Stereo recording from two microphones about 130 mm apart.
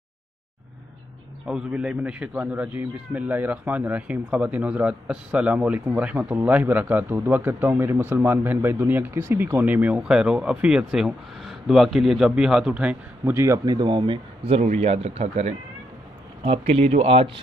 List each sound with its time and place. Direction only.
1.5 s a man's voice: 5° right (ahead or behind)
13.2 s speech: 20° right (ahead or behind); by 14.6 s 40° right (ahead or behind)
14.6 s speech: 55° right (ahead or behind)